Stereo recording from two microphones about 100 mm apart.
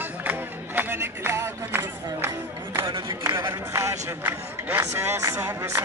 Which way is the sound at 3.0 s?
30° right (ahead or behind).